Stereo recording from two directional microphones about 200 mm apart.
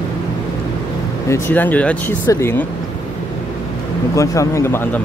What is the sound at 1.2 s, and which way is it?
Speech, 15° left (ahead or behind).